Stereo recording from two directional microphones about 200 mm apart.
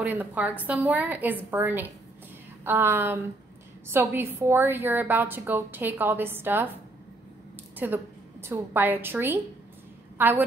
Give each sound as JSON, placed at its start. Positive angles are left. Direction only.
{"t": 0.0, "sound": "a woman's voice", "side_deg": -10}
{"t": 7.7, "sound": "a woman's voice", "side_deg": -10}